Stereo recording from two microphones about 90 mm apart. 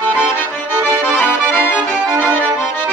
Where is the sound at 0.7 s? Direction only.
20° left (ahead or behind).